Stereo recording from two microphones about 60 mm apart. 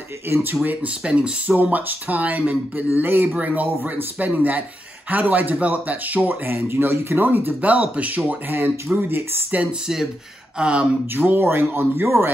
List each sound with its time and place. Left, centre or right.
0.3 s speech: right
0.7 s speech: centre
1.6 s speech: right
8.3 s speech: right
9.6 s speech: centre
11.1 s speech: right